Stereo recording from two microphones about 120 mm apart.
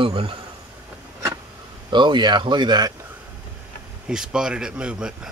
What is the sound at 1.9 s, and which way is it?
Speech, 40° right (ahead or behind).